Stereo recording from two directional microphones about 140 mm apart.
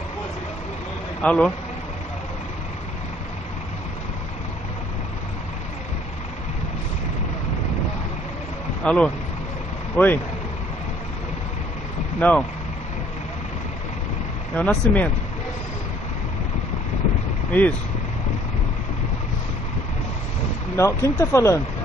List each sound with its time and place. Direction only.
1.2 s speech: 5° left (ahead or behind)
8.8 s speech: 5° left (ahead or behind)
12.2 s speech: 10° left (ahead or behind)
14.6 s speech: 10° left (ahead or behind)
17.5 s speech: 10° left (ahead or behind)
20.7 s speech: 20° left (ahead or behind)